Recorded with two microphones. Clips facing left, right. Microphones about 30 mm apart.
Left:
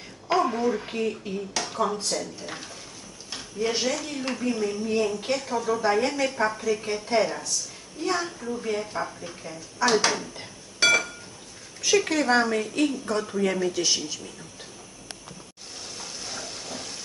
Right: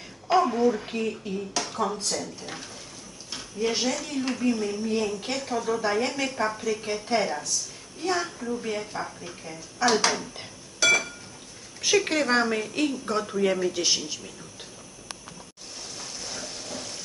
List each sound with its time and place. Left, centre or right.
0.3 s speech: centre
10.8 s a sound: left
12.2 s a woman's voice: centre
16.0 s frying: centre